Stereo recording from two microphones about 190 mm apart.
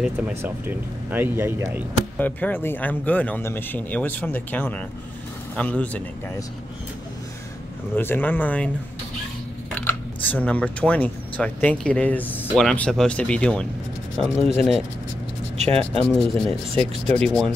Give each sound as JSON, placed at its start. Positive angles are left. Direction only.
{"t": 0.0, "sound": "speech", "side_deg": -10}
{"t": 2.1, "sound": "speech", "side_deg": 10}
{"t": 7.9, "sound": "speech", "side_deg": 10}
{"t": 9.8, "sound": "speech", "side_deg": 10}
{"t": 15.5, "sound": "speech", "side_deg": -35}
{"t": 16.0, "sound": "speech", "side_deg": 5}